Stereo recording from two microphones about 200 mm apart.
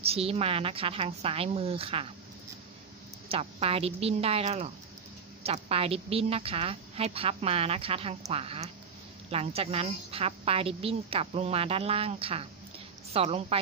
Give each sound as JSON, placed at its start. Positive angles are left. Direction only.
{"t": 0.0, "sound": "a woman's voice", "side_deg": -30}
{"t": 3.3, "sound": "a woman's voice", "side_deg": -30}